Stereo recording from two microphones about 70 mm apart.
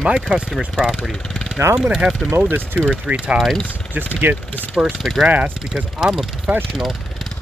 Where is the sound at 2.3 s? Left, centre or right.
Right.